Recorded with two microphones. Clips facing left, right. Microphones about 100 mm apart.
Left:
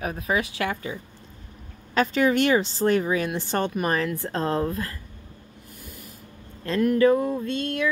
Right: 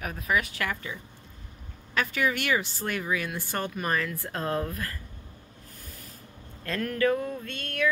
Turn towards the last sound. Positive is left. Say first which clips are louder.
# left 4 dB
turn(degrees=20)  # may be behind; listen again after turning